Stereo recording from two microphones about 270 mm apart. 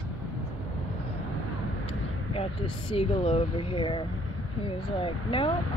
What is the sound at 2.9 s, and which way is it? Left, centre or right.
A woman's voice, centre.